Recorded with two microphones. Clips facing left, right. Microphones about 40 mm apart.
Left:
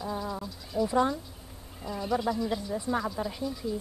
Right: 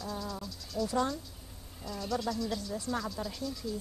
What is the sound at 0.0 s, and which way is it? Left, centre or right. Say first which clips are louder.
Cricket: left 5 dB; left.